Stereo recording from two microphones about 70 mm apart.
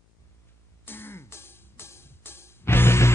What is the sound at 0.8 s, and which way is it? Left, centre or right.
Music, left.